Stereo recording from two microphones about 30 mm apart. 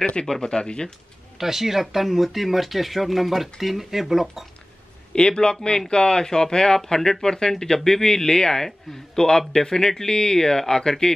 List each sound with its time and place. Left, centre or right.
0.0 s speech: left
1.4 s speech: centre
5.1 s a man's voice: left